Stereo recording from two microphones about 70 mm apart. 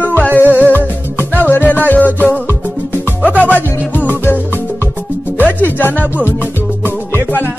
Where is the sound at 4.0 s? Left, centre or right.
Left.